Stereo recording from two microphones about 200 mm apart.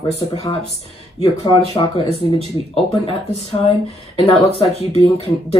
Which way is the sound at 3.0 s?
30° left (ahead or behind).